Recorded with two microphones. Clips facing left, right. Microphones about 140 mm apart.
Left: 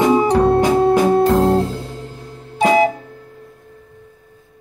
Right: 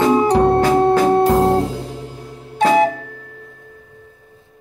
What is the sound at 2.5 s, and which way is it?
Music, 5° left (ahead or behind).